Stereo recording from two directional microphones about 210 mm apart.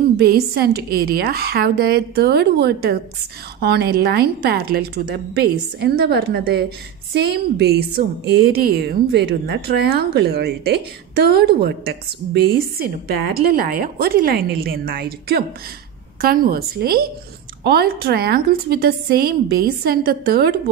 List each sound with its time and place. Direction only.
0.3 s speech: 45° right (ahead or behind)